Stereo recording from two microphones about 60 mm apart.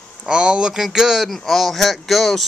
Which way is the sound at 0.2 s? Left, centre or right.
Centre.